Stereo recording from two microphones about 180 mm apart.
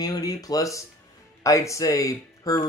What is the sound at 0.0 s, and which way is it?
Speech, 20° left (ahead or behind).